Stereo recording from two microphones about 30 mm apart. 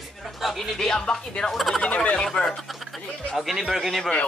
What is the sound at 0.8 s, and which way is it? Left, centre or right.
Speech, centre.